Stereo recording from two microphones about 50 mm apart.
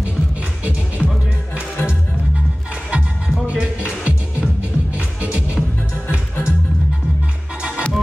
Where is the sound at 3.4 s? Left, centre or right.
Right.